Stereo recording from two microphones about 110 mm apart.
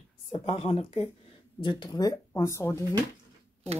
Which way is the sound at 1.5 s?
45° left (ahead or behind).